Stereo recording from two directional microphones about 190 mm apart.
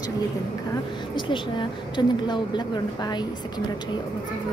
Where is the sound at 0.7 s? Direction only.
25° left (ahead or behind).